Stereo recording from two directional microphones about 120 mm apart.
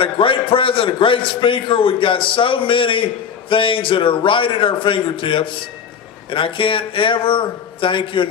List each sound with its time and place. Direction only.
0.0 s a man's voice: 45° left (ahead or behind)